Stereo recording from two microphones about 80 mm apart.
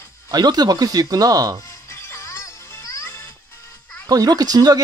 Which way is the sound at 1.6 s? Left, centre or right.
Left.